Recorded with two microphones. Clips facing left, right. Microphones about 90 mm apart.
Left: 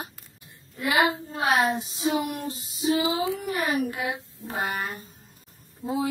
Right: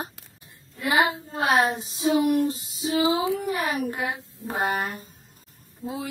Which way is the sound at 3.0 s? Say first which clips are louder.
Right 3 dB; 25° right (ahead or behind).